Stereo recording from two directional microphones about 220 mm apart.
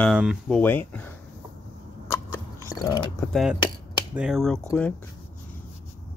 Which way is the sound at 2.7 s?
15° left (ahead or behind).